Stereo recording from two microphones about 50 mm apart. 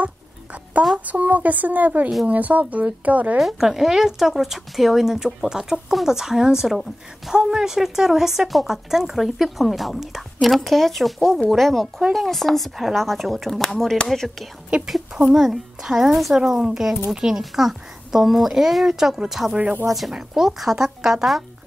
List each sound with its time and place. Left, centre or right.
0.0 s a sound: right
0.9 s speech: right
3.3 s a woman's voice: centre
15.3 s a woman's voice: centre